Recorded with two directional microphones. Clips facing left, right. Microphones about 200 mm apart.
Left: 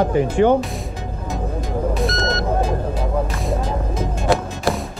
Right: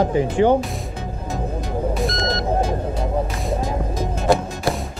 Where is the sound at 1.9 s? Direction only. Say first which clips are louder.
Left 1 dB; centre (ahead or behind).